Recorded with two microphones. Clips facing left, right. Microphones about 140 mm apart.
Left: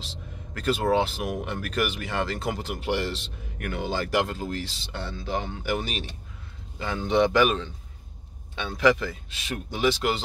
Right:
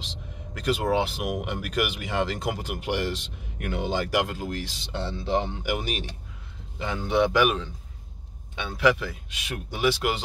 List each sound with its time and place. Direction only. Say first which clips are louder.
0.0 s speech: even; 15° right (ahead or behind)
4.9 s speech: right 4 dB; 25° right (ahead or behind); by 10.2 s 10° right (ahead or behind)